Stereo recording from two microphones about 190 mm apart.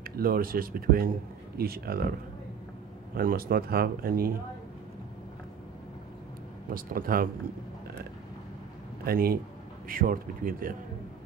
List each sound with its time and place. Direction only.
0.1 s speech: 50° right (ahead or behind)
3.2 s speech: 50° right (ahead or behind)
6.7 s speech: 50° right (ahead or behind)
9.0 s speech: 50° right (ahead or behind)